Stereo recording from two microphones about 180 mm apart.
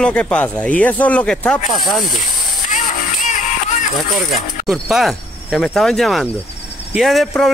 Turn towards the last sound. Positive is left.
turn(degrees=0)  # may be behind; listen again after turning